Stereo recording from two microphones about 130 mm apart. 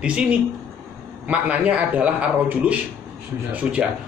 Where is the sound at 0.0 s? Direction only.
10° right (ahead or behind).